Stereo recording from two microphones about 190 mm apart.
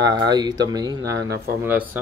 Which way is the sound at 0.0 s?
20° right (ahead or behind).